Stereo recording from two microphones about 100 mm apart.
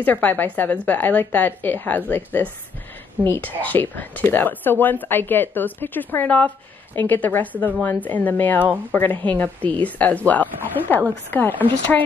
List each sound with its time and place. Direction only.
0.0 s a woman's voice: 15° left (ahead or behind)